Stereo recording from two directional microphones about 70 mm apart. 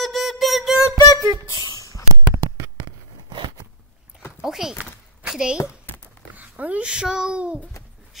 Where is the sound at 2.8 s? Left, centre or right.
Right.